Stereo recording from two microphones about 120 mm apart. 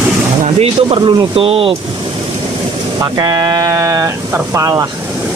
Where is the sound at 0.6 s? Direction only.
55° right (ahead or behind).